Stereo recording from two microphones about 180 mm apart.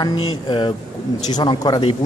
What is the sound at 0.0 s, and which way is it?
Speech, 25° left (ahead or behind).